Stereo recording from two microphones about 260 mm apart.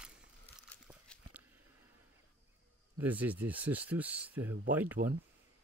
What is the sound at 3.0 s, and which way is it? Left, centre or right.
Speech, centre.